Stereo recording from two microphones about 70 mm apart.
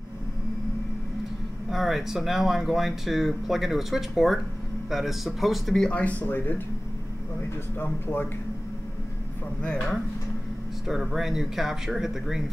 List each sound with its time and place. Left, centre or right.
1.7 s speech: centre
5.9 s speech: centre
7.8 s speech: left
9.6 s speech: centre
10.9 s speech: centre